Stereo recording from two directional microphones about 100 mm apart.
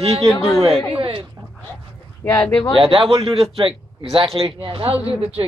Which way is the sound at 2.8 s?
60° right (ahead or behind).